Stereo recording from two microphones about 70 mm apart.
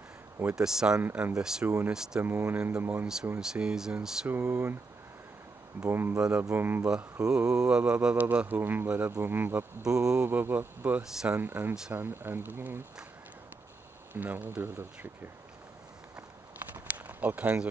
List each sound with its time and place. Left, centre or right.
0.6 s speech: centre
2.2 s speech: right
3.3 s speech: centre
4.3 s speech: right
5.9 s speech: right
6.1 s speech: centre
6.5 s speech: right
7.2 s speech: centre; by 9.7 s right
9.8 s speech: centre
10.2 s speech: right
11.0 s speech: centre
11.3 s speech: right
14.1 s speech: right
16.8 s a sound: right